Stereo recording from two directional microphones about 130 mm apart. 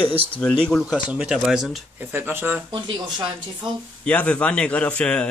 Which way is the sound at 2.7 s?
35° right (ahead or behind).